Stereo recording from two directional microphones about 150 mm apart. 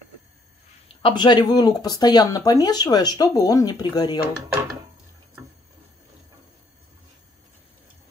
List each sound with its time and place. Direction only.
1.0 s speech: 30° left (ahead or behind)